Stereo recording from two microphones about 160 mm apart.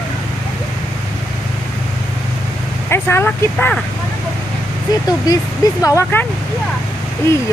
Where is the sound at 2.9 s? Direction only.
15° left (ahead or behind).